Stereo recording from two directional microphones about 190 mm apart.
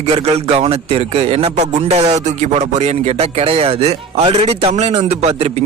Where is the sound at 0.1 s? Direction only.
35° right (ahead or behind).